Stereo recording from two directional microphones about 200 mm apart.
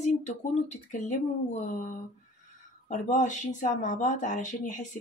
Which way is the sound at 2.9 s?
35° left (ahead or behind).